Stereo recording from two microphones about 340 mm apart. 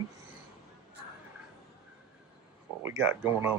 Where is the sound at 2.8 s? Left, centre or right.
Centre.